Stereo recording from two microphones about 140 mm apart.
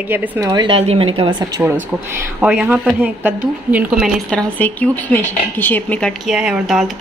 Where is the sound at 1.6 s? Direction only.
10° right (ahead or behind).